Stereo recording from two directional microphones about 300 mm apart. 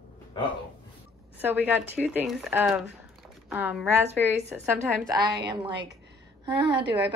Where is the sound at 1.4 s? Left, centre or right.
Centre.